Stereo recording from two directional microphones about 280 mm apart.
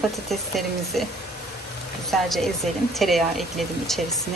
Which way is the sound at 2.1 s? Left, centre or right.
Centre.